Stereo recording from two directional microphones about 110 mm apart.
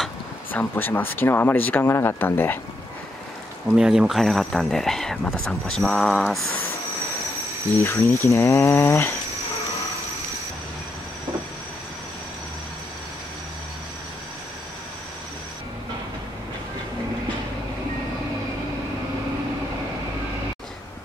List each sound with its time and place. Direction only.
0.5 s speech: 20° left (ahead or behind)
3.6 s speech: 5° right (ahead or behind)
7.8 s speech: 25° left (ahead or behind)